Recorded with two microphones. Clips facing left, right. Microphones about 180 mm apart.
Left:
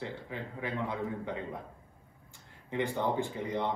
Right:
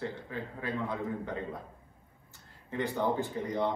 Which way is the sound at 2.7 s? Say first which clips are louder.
Even; 15° left (ahead or behind).